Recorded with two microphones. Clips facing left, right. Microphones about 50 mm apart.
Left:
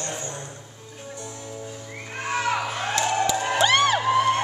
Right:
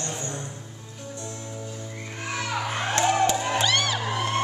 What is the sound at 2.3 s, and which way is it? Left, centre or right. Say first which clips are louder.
Children playing: left 6 dB; left.